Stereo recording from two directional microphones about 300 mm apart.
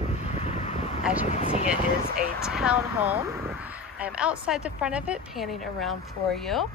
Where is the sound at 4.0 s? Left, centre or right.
Centre.